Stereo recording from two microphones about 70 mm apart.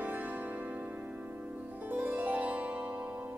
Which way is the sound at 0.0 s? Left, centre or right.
Right.